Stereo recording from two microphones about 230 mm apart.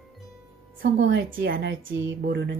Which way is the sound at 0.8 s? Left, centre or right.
Right.